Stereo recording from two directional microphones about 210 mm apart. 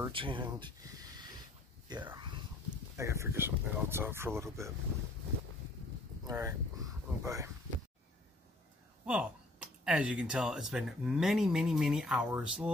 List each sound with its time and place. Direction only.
0.1 s speech: 25° right (ahead or behind)
2.1 s speech: 20° right (ahead or behind)
6.2 s a sound: 15° right (ahead or behind)
9.0 s speech: 5° right (ahead or behind)